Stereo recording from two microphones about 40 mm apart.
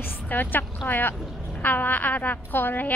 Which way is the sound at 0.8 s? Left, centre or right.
Left.